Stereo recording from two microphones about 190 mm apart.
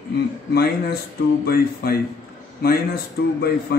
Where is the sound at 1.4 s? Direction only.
55° left (ahead or behind).